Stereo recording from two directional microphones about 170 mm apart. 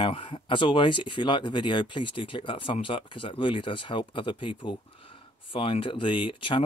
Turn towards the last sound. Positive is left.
turn(degrees=30)  # may be behind; listen again after turning